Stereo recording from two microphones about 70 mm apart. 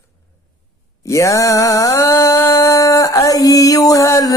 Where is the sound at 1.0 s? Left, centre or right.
Left.